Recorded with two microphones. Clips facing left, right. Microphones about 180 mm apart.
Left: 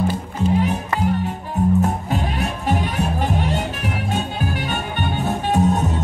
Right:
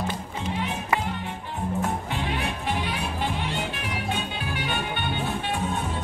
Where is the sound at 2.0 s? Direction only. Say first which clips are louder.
Left 5 dB; 40° left (ahead or behind).